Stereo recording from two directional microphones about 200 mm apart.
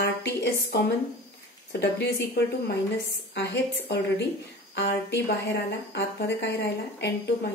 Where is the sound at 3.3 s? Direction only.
60° left (ahead or behind).